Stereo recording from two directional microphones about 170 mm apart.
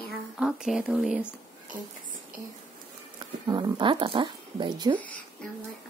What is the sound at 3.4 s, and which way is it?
Speech, 25° right (ahead or behind).